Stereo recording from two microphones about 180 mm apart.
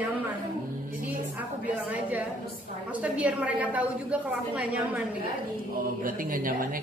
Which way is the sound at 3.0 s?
5° right (ahead or behind).